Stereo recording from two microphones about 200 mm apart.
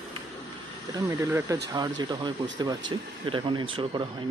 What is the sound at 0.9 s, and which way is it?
Speech, 15° right (ahead or behind).